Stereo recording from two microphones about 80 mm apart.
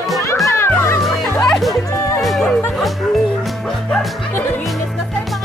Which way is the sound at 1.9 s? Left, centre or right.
Left.